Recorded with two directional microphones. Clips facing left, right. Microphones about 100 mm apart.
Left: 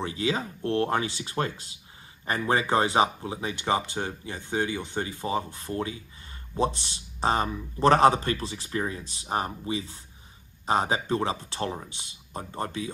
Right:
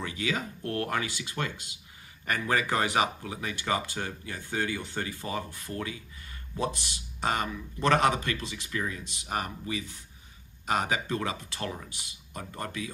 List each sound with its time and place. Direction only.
0.0 s speech: 30° left (ahead or behind)